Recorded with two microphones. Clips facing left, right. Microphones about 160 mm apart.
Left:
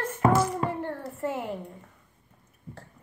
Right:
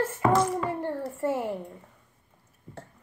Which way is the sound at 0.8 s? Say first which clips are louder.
Right 3 dB; 10° right (ahead or behind).